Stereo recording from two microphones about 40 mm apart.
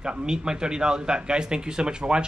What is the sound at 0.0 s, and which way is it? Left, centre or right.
Speech, right.